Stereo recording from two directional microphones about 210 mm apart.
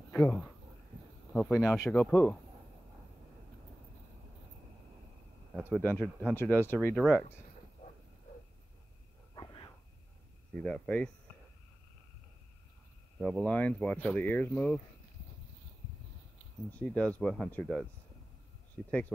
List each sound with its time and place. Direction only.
0.1 s speech: 5° left (ahead or behind)
5.8 s speech: 5° left (ahead or behind)
9.3 s a sound: 20° left (ahead or behind)
10.5 s speech: 5° left (ahead or behind)
13.2 s speech: centre (ahead or behind)
16.7 s speech: 5° left (ahead or behind)
18.9 s speech: 5° left (ahead or behind)